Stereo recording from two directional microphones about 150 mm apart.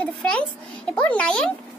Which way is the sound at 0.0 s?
5° left (ahead or behind).